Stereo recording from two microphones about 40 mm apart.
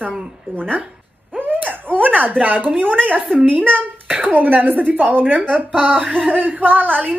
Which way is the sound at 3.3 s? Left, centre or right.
Right.